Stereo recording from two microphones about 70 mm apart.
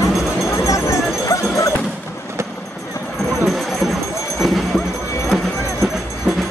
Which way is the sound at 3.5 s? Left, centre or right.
Centre.